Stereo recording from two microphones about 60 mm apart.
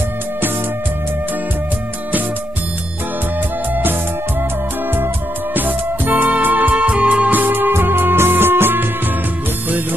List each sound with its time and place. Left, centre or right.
4.9 s music: right